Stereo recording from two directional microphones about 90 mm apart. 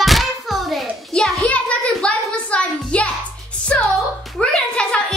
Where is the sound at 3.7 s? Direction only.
10° left (ahead or behind).